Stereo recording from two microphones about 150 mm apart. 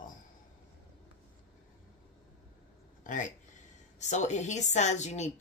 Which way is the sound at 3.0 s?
60° left (ahead or behind).